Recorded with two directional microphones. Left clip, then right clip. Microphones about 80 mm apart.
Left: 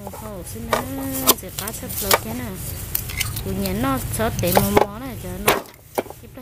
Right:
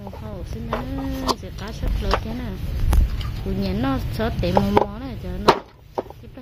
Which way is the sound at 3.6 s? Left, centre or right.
Left.